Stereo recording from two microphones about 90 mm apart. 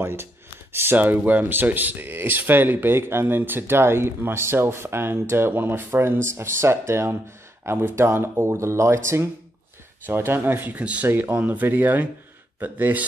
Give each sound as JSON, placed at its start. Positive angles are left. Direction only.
{"t": 0.0, "sound": "speech", "side_deg": -25}